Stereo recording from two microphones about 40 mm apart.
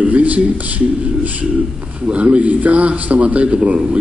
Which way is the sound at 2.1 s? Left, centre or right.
Right.